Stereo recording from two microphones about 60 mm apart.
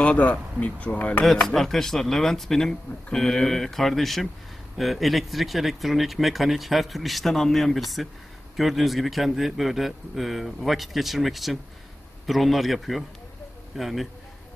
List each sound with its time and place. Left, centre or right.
0.0 s speech: left
1.2 s speech: centre